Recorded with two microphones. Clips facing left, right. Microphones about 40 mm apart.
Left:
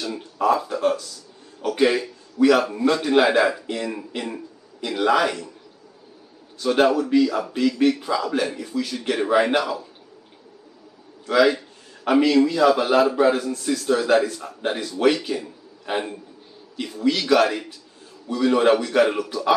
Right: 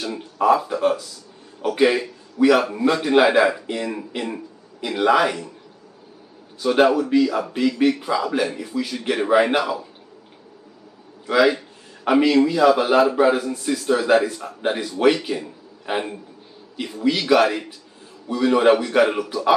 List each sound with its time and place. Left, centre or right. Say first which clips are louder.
0.0 s a man's voice: right 2 dB; centre
6.6 s a man's voice: right 2 dB; centre
11.2 s a man's voice: right 1 dB; centre